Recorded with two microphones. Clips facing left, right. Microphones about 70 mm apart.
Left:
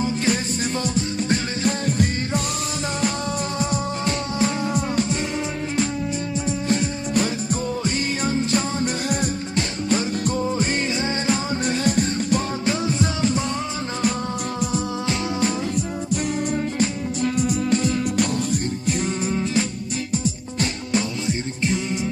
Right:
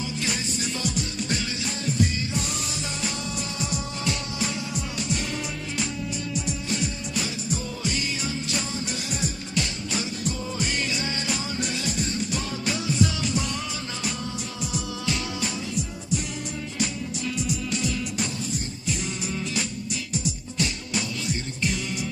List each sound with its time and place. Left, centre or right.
0.0 s music: left
3.5 s music: left
6.3 s music: left
12.6 s music: left
14.7 s music: left
18.1 s music: left
21.3 s music: left